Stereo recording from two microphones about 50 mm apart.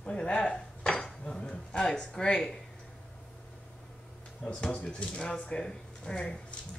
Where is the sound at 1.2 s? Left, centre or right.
Centre.